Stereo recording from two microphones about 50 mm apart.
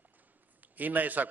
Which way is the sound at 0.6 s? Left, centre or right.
Right.